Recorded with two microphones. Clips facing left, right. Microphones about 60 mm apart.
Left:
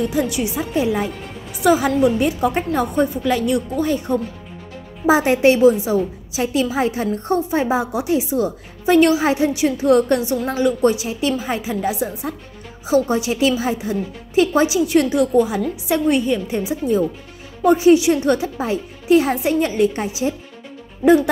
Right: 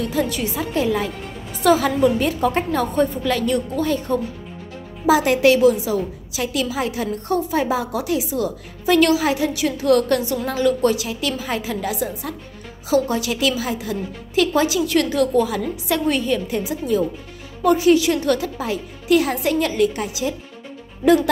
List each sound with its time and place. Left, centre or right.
0.0 s a woman's voice: centre
5.0 s a woman's voice: left